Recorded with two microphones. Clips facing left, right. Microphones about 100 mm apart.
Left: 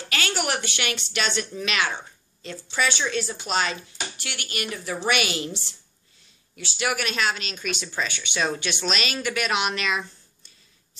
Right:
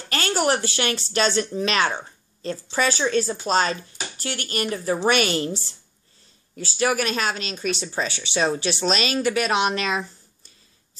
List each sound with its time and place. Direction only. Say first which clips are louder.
0.1 s speech: right 5 dB; 40° right (ahead or behind)